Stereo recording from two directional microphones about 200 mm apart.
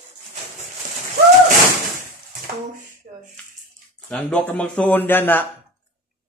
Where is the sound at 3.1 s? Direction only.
40° right (ahead or behind).